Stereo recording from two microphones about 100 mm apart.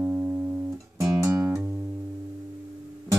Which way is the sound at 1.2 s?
35° right (ahead or behind).